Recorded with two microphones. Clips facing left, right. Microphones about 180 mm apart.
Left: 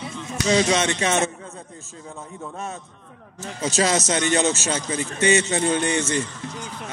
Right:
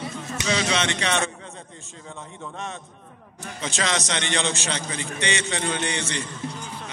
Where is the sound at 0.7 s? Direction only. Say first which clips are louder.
Left 4 dB; 45° left (ahead or behind).